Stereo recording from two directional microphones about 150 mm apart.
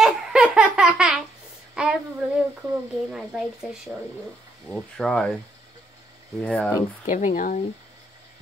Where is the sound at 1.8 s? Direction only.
5° right (ahead or behind).